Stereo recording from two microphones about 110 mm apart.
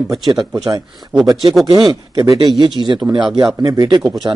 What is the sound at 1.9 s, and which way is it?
Speech, 40° right (ahead or behind).